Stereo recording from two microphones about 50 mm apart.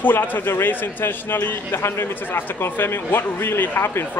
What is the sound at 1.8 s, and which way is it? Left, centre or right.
A man's voice, left.